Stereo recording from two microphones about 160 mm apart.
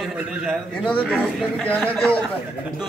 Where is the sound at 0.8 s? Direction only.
10° left (ahead or behind).